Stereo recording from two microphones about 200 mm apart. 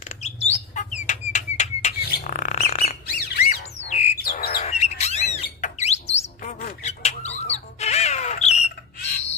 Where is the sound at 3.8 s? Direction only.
30° left (ahead or behind).